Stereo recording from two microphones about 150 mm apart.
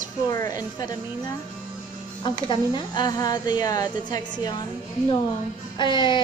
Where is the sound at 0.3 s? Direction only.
25° left (ahead or behind).